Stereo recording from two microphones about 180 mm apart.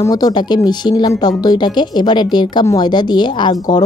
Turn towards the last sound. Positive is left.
turn(degrees=25)  # may be behind; listen again after turning